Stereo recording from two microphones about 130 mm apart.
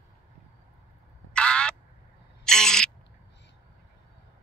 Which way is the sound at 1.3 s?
5° left (ahead or behind).